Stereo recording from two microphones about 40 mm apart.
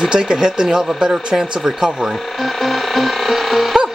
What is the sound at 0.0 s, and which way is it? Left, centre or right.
Speech, centre.